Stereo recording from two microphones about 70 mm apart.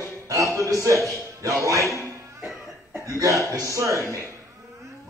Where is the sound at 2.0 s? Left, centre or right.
Right.